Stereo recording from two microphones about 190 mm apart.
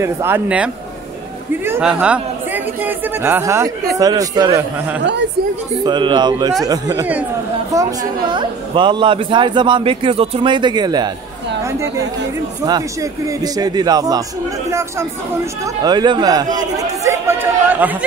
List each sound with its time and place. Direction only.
0.0 s a man's voice: 10° right (ahead or behind)
12.6 s a man's voice: 20° right (ahead or behind)